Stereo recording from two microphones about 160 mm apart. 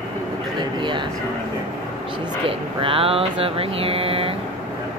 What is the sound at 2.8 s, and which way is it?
Mantra, 35° right (ahead or behind).